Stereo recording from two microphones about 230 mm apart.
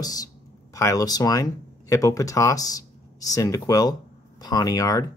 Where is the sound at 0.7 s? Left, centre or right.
Centre.